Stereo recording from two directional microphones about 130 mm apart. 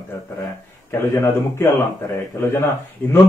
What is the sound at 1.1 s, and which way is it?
Speech, 20° left (ahead or behind).